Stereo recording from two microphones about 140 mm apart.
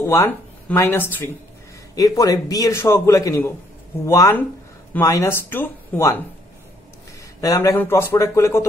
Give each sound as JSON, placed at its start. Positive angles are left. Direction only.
{"t": 0.0, "sound": "a man's voice", "side_deg": 15}
{"t": 7.3, "sound": "a man's voice", "side_deg": 25}